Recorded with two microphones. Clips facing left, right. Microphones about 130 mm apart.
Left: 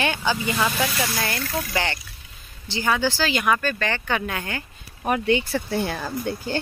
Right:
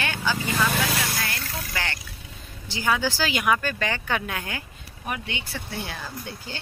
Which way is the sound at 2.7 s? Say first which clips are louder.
Left 2 dB; 5° right (ahead or behind).